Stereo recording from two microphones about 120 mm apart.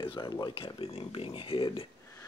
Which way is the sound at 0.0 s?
40° left (ahead or behind).